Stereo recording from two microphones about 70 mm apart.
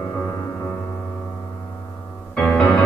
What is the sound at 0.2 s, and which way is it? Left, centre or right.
Music, centre.